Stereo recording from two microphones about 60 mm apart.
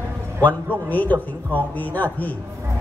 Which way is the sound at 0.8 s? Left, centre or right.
Left.